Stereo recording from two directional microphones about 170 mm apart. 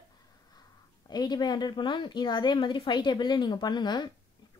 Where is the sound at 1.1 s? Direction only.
25° left (ahead or behind).